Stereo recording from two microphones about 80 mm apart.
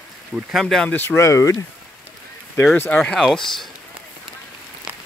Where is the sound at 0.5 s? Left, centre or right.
Centre.